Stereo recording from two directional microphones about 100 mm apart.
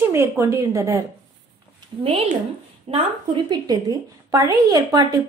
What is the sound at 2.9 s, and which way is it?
Speech, 90° right.